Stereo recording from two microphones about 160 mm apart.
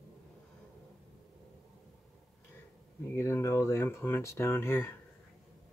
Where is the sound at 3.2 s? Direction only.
15° left (ahead or behind).